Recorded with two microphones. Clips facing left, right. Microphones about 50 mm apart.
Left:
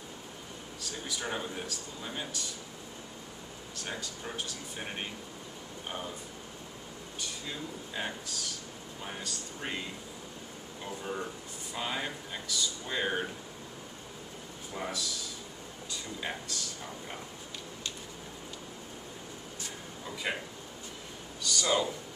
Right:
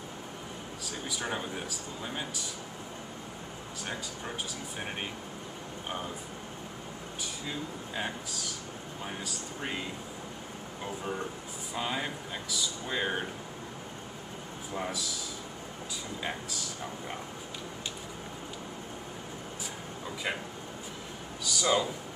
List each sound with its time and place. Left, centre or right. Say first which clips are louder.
0.8 s speech: right 1 dB; centre
7.2 s speech: right 2 dB; centre
11.7 s speech: right 2 dB; centre
14.7 s speech: right 2 dB; centre
16.2 s speech: right 1 dB; centre
20.3 s speech: even; centre